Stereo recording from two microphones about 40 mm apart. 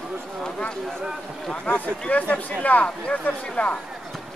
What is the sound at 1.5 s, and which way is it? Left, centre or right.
A man's voice, left.